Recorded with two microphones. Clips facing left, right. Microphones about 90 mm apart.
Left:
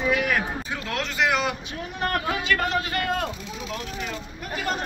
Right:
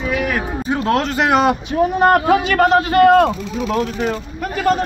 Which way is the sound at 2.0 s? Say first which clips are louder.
Right 11 dB; 90° right.